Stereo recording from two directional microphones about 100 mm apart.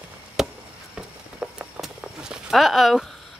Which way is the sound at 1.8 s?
10° right (ahead or behind).